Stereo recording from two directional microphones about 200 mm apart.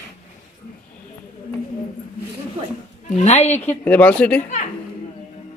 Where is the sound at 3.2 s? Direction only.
35° left (ahead or behind).